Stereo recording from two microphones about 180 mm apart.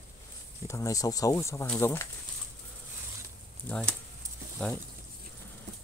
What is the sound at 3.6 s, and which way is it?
Speech, 5° left (ahead or behind).